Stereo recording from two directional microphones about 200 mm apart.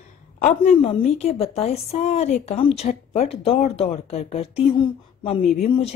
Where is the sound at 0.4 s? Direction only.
30° left (ahead or behind).